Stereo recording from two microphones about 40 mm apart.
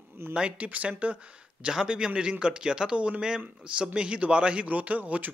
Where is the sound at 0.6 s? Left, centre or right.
Right.